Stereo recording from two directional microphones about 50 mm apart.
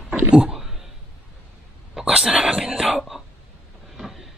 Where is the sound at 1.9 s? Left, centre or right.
Centre.